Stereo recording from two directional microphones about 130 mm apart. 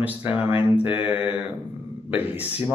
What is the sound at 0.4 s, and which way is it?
Speech, 15° right (ahead or behind).